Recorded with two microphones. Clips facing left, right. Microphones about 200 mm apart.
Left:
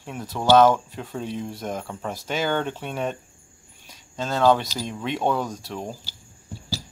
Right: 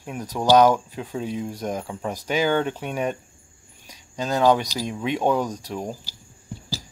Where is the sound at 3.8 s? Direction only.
15° right (ahead or behind).